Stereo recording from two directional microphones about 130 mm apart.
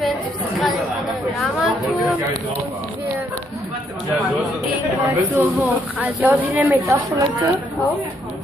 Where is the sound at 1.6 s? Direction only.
10° right (ahead or behind).